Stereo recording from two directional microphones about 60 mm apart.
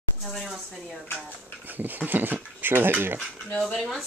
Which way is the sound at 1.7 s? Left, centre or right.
Right.